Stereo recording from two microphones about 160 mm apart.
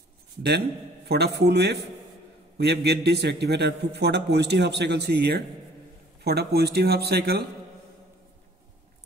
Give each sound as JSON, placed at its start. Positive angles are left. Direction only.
{"t": 0.4, "sound": "a man's voice", "side_deg": -90}